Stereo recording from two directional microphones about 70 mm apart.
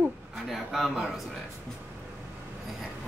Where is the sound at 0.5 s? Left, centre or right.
Centre.